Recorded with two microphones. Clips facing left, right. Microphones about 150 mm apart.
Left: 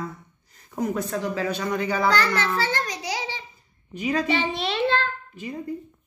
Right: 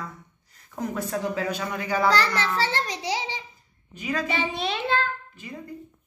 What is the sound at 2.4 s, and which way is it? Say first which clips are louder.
A child's voice: left 1 dB; 30° right (ahead or behind).